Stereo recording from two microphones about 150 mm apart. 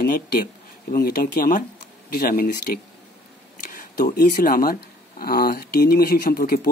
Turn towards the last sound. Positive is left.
turn(degrees=80)